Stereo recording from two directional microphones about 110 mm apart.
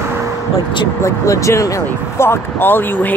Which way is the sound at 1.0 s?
30° left (ahead or behind).